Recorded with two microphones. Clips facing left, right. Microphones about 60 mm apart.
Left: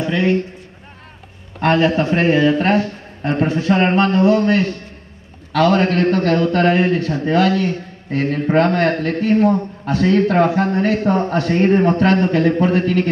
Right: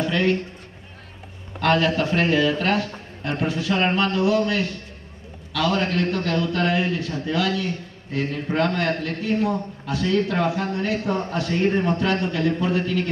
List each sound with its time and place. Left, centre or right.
0.0 s a man's voice: centre
1.6 s a man's voice: left